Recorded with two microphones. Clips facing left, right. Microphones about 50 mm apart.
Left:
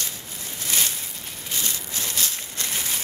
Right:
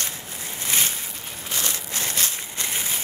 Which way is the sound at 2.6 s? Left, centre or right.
Centre.